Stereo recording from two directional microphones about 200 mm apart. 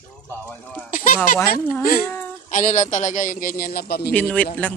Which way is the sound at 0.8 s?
40° left (ahead or behind).